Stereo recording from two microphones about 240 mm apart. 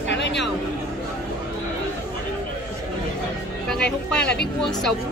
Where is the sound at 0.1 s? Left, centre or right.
Left.